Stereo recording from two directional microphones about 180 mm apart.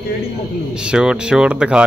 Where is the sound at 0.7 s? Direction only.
5° right (ahead or behind).